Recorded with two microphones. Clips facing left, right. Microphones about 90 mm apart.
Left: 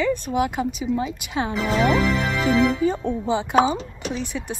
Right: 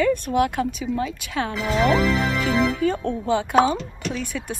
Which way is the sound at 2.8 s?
15° left (ahead or behind).